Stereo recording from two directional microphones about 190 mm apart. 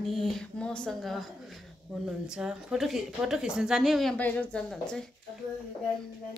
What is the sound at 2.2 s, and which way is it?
A woman's voice, 5° right (ahead or behind).